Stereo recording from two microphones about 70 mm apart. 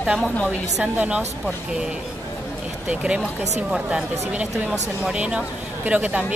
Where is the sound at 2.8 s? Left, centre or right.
Centre.